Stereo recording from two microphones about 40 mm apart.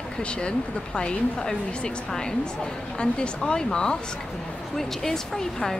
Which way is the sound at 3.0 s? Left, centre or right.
Left.